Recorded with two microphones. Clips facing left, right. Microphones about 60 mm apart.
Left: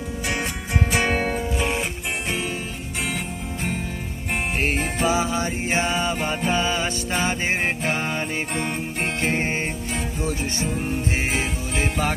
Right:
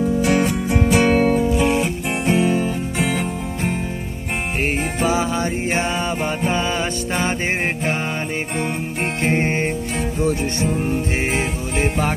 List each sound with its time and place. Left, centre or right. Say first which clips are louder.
5.0 s music: right 2 dB; right
9.2 s music: right 6 dB; right